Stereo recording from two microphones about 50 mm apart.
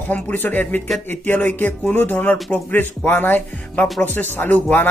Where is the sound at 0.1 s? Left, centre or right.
Left.